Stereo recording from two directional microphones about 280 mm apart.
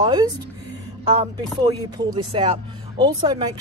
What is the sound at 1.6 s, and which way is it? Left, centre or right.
Speech, centre.